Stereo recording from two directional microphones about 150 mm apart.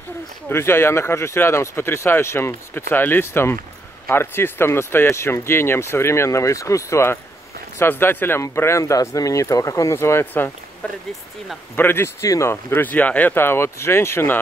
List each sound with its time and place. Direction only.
0.5 s speech: 15° left (ahead or behind)